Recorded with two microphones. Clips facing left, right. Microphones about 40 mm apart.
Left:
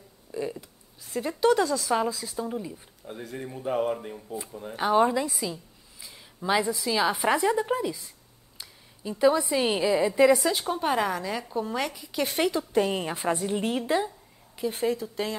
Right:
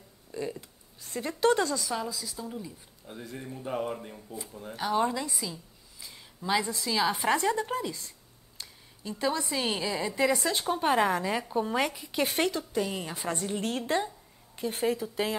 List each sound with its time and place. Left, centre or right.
0.3 s a sound: centre
1.6 s a woman's voice: centre
1.9 s a woman's voice: left; by 5.3 s centre
5.4 s a sound: centre
6.4 s a woman's voice: centre
12.7 s a woman's voice: left
13.3 s a woman's voice: centre
13.8 s a woman's voice: centre